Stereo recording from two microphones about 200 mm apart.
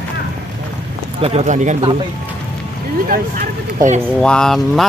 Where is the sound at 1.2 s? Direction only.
35° right (ahead or behind).